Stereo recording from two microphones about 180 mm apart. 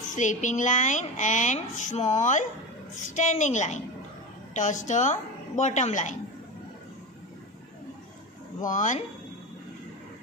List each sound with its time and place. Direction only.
0.1 s a woman's voice: 45° left (ahead or behind)
8.6 s a woman's voice: 45° left (ahead or behind)